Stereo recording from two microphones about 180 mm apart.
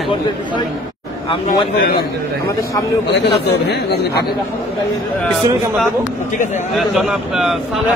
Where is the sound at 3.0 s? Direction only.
70° left (ahead or behind).